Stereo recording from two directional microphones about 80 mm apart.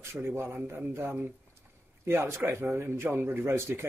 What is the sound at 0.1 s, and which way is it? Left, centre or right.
A man's voice, right.